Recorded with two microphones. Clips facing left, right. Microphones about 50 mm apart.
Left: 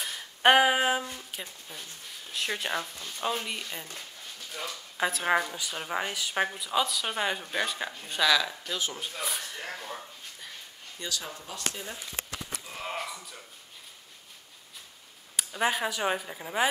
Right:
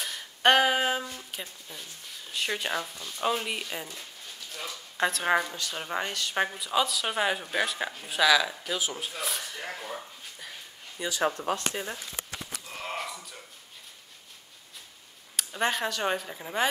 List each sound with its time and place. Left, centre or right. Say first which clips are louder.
0.0 s a sound: left 1 dB; centre
1.3 s a woman's voice: right 1 dB; centre
4.6 s a woman's voice: right 2 dB; centre
11.2 s speech: right 13 dB; right
11.5 s speech: right 5 dB; right
12.6 s wheeze: right 1 dB; centre
15.3 s a woman's voice: even; centre